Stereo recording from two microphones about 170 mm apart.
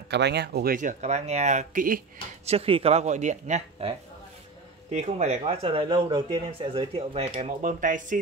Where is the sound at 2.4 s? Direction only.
35° right (ahead or behind).